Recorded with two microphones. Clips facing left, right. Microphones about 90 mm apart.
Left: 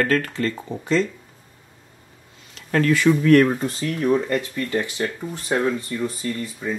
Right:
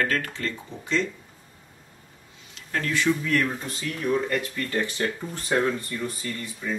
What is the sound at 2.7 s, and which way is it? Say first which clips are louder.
Speech: left 7 dB; 65° left (ahead or behind).